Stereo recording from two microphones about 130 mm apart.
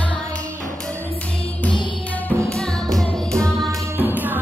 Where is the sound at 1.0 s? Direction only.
10° left (ahead or behind).